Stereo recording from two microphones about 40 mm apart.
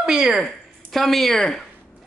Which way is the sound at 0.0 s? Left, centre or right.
Centre.